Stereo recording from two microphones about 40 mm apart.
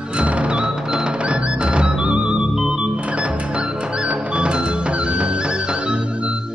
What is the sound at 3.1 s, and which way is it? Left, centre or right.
Music, right.